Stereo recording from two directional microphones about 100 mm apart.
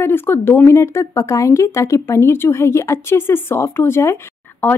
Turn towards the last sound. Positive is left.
turn(degrees=25)  # may be behind; listen again after turning